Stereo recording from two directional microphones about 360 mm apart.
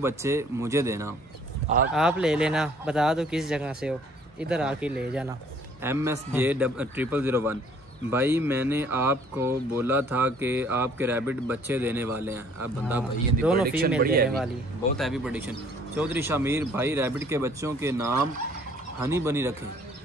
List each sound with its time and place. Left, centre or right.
0.0 s speech: centre
13.7 s speech: right
15.0 s speech: centre